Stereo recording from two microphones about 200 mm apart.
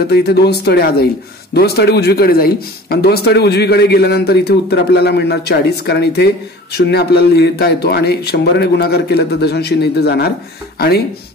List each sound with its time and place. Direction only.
0.1 s speech: 55° left (ahead or behind)